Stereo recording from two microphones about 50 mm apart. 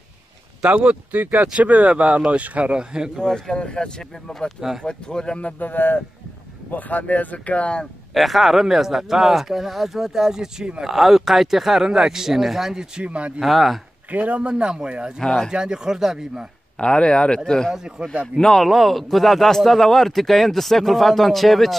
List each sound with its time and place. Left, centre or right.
0.6 s speech: centre
1.1 s a man's voice: right; by 3.1 s centre
3.2 s speech: centre
5.6 s speech: left; by 7.9 s centre
8.1 s a man's voice: centre
13.0 s a man's voice: right
13.4 s a man's voice: centre
14.1 s a man's voice: right
14.5 s speech: centre
15.2 s speech: centre
15.5 s speech: centre
16.7 s speech: centre
17.7 s speech: centre
18.4 s a man's voice: centre